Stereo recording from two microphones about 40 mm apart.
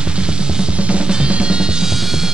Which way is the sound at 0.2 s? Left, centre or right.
Right.